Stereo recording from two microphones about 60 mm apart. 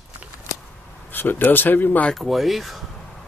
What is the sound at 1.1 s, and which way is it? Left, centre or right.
Speech, left.